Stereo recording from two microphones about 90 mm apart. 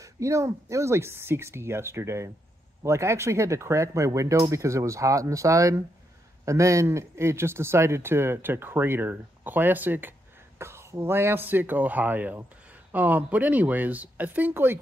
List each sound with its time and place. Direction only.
0.0 s speech: 35° right (ahead or behind)